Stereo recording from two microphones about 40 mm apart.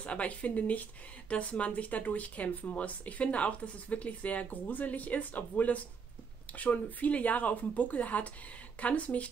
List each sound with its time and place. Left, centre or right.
0.0 s speech: left